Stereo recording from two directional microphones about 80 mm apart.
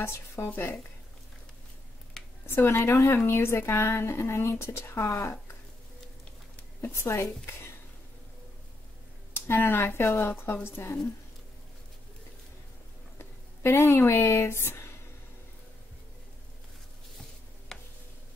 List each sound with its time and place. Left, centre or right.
0.5 s speech: left
2.4 s speech: left
6.8 s speech: left
9.3 s speech: left
13.2 s speech: left
17.7 s tick-tock: centre